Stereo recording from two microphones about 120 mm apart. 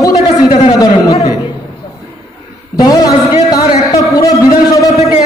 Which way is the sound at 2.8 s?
30° left (ahead or behind).